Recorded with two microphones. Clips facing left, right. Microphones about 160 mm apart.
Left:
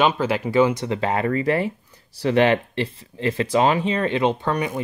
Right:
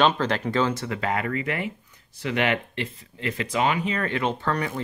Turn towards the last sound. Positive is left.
turn(degrees=20)  # may be behind; listen again after turning